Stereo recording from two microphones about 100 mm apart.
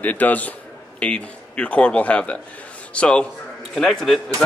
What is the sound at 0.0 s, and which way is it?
A man's voice, 15° left (ahead or behind).